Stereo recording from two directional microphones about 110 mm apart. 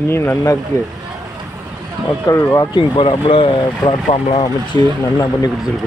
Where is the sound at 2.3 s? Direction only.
25° left (ahead or behind).